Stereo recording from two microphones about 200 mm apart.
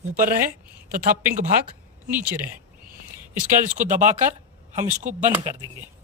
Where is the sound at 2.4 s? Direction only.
45° right (ahead or behind).